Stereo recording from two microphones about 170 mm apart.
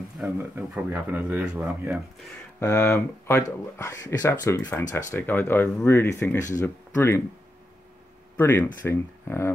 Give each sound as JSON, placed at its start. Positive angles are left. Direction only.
{"t": 0.2, "sound": "speech", "side_deg": -10}
{"t": 2.6, "sound": "speech", "side_deg": 15}
{"t": 8.4, "sound": "speech", "side_deg": 10}